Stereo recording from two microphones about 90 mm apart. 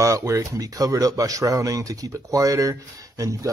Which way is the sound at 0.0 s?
35° right (ahead or behind).